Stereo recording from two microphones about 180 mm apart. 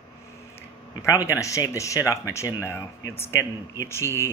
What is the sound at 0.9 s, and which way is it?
Speech, 15° left (ahead or behind).